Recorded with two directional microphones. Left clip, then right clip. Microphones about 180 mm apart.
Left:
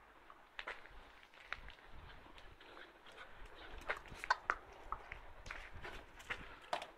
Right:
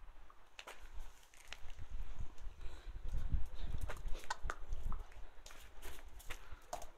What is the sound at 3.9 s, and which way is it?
Horse, 10° left (ahead or behind).